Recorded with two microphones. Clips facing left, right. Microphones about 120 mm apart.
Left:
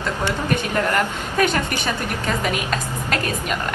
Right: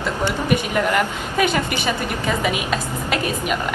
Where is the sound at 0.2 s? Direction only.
10° right (ahead or behind).